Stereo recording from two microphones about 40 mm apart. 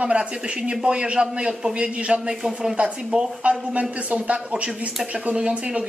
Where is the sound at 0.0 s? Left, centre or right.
Right.